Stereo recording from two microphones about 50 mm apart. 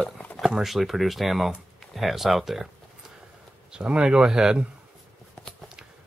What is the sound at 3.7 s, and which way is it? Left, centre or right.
Speech, centre.